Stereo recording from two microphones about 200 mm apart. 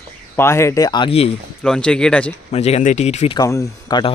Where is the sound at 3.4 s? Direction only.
20° left (ahead or behind).